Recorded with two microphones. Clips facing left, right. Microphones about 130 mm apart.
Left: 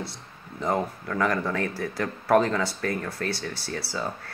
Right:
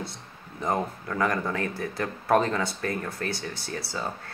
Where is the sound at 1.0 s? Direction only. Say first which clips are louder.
Even; 20° right (ahead or behind).